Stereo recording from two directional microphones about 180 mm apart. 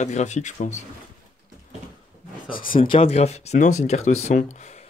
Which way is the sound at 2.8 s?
30° left (ahead or behind).